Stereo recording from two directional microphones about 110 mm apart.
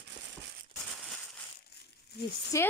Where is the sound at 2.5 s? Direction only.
30° left (ahead or behind).